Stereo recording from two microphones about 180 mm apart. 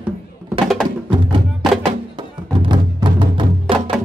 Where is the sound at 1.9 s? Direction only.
25° right (ahead or behind).